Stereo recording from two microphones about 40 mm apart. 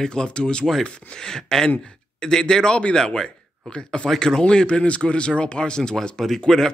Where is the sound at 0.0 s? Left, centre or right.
Left.